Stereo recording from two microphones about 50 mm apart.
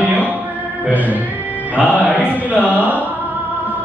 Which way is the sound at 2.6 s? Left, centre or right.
Left.